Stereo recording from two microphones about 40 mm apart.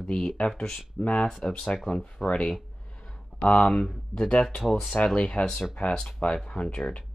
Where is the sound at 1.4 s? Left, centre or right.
Left.